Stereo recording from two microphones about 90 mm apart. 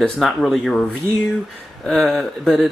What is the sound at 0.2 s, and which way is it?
Speech, centre (ahead or behind).